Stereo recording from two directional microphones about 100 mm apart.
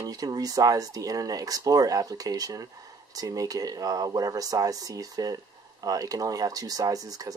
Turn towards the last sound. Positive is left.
turn(degrees=-40)  # may be behind; listen again after turning